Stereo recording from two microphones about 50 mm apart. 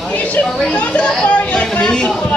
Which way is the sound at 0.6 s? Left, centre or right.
Left.